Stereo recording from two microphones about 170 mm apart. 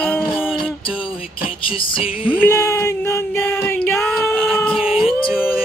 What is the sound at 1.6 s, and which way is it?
Music, 30° left (ahead or behind).